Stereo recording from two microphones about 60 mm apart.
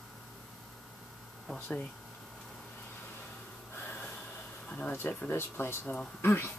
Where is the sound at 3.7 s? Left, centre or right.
Left.